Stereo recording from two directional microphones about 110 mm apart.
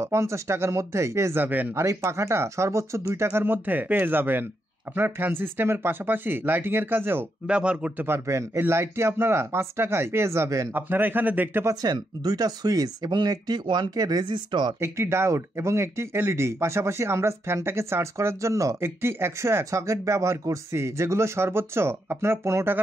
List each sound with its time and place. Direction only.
0.0 s speech: 25° right (ahead or behind)
7.4 s speech: 10° right (ahead or behind)
8.1 s speech: 25° right (ahead or behind)
11.7 s speech: 35° right (ahead or behind)
14.8 s speech: 25° right (ahead or behind)